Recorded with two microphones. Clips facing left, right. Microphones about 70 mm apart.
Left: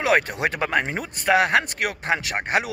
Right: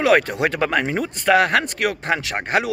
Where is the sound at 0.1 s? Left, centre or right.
Centre.